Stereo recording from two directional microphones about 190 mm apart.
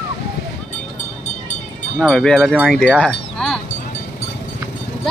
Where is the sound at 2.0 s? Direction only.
5° left (ahead or behind).